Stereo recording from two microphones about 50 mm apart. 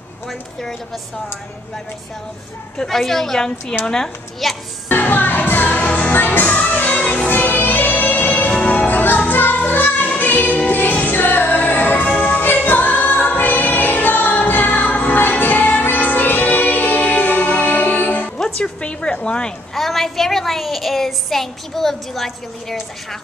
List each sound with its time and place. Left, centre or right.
0.3 s a woman's voice: centre
2.8 s a woman's voice: centre
4.4 s speech: centre
4.8 s music: left
5.9 s music: left
6.1 s music: left
7.2 s music: left
8.5 s music: left
8.8 s music: left
18.4 s music: centre
19.2 s speech: centre
19.7 s speech: centre